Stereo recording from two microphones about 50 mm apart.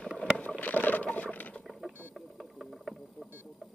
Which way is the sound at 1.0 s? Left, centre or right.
Left.